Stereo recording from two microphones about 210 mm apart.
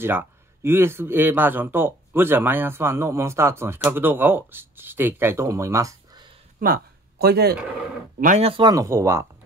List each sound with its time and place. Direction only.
0.0 s speech: 10° right (ahead or behind)
6.6 s speech: 45° right (ahead or behind)
8.2 s speech: 35° right (ahead or behind); by 9.3 s 15° right (ahead or behind)